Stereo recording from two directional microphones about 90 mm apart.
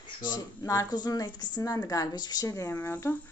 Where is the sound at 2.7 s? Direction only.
20° left (ahead or behind).